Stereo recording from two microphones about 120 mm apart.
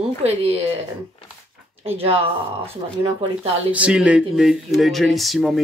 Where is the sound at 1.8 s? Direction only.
55° right (ahead or behind).